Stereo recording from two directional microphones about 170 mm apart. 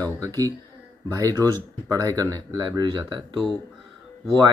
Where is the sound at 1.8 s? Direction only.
20° right (ahead or behind).